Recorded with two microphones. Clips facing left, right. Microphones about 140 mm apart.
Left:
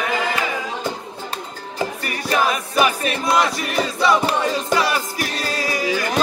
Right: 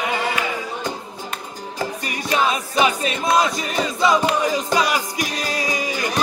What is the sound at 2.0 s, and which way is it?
Music, 20° right (ahead or behind).